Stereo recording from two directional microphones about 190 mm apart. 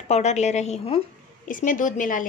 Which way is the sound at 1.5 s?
45° left (ahead or behind).